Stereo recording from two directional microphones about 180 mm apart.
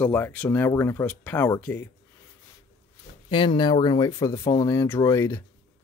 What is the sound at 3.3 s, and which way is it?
Speech, 30° left (ahead or behind).